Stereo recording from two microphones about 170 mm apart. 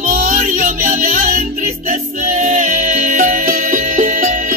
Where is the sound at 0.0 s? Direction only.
45° right (ahead or behind).